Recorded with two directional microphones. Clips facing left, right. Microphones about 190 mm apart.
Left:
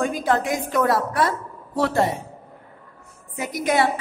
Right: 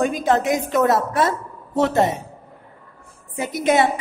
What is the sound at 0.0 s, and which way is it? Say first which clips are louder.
A woman's voice: right 3 dB; 20° right (ahead or behind).